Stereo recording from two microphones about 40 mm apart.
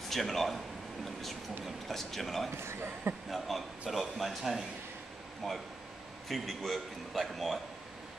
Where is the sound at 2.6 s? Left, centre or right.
Right.